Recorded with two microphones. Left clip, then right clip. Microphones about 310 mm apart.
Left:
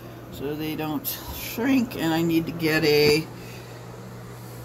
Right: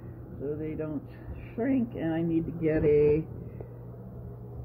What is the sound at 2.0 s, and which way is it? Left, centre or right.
Mantra, centre.